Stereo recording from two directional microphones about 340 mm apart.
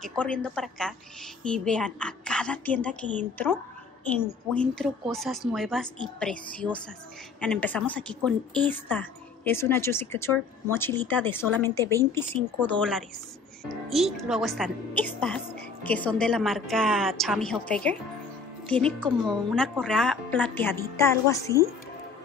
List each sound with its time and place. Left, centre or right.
0.2 s a woman's voice: centre
4.2 s a woman's voice: centre
13.9 s a woman's voice: centre